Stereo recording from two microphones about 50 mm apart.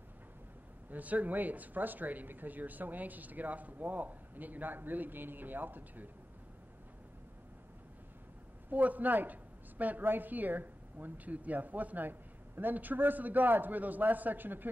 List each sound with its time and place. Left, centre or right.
0.8 s a woman's voice: right
8.6 s a woman's voice: right